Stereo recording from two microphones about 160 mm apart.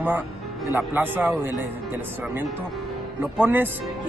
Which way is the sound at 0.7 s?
15° right (ahead or behind).